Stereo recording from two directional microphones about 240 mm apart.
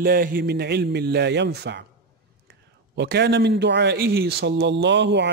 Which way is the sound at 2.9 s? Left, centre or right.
Right.